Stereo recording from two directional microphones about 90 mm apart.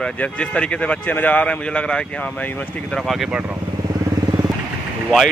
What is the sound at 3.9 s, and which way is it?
Vehicle, 50° right (ahead or behind).